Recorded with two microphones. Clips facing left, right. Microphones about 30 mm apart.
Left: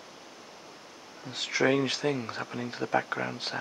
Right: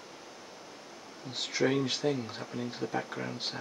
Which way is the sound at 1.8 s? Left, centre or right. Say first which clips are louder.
Left 2 dB; left.